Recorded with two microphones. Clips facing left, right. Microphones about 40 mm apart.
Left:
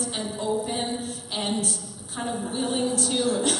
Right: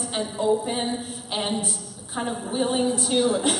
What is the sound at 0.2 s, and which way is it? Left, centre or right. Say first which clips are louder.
A woman's voice: right 6 dB; centre.